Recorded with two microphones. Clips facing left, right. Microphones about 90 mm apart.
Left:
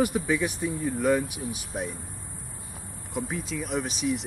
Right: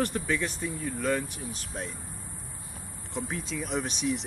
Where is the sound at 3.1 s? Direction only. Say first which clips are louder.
Left 2 dB; 5° left (ahead or behind).